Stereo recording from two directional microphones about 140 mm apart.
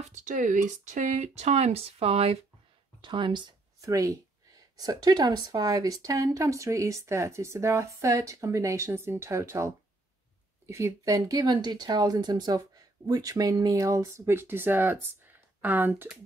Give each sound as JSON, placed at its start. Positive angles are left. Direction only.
{"t": 0.1, "sound": "speech", "side_deg": -60}